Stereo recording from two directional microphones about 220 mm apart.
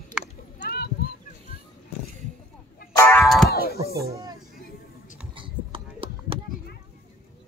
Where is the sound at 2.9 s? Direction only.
10° left (ahead or behind).